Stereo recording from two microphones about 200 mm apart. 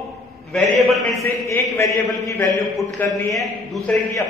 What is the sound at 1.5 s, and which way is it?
A man's voice, 15° left (ahead or behind).